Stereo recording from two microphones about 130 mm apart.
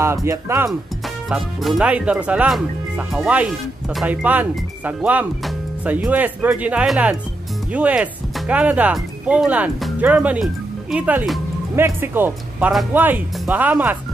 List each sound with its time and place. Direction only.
0.0 s speech: 20° right (ahead or behind)
1.3 s speech: 5° right (ahead or behind)